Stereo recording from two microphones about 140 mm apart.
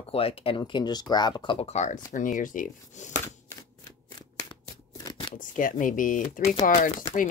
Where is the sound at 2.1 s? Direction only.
70° left (ahead or behind).